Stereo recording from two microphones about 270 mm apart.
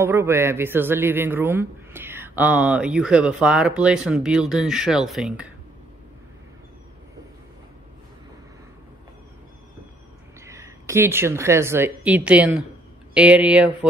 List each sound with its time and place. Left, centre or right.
0.0 s a man's voice: centre
10.4 s a woman's voice: centre